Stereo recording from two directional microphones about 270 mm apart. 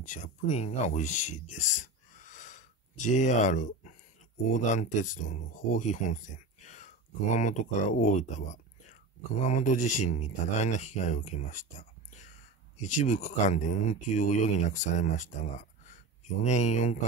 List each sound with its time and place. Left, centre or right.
0.0 s speech: left
1.5 s a sound: left
4.5 s speech: left
12.7 s speech: left
16.4 s speech: left